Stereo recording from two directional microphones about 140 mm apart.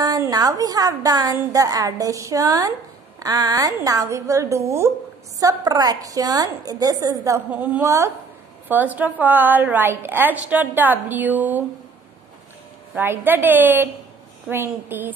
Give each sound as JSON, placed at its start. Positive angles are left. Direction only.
{"t": 0.0, "sound": "a woman's voice", "side_deg": -25}
{"t": 7.5, "sound": "a woman's voice", "side_deg": -10}
{"t": 7.8, "sound": "a woman's voice", "side_deg": -20}
{"t": 12.9, "sound": "a woman's voice", "side_deg": -15}